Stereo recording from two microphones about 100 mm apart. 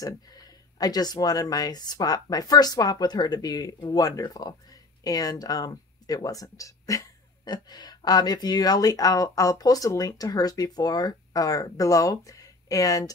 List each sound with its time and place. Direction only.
0.0 s speech: 40° left (ahead or behind)